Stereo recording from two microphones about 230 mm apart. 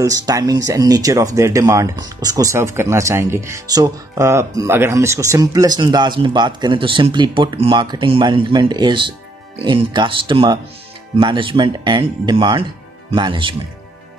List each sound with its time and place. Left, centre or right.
0.0 s speech: centre